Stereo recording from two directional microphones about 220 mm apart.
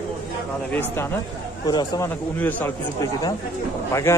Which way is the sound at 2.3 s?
10° left (ahead or behind).